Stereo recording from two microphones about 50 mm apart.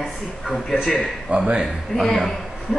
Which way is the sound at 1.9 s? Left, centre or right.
Centre.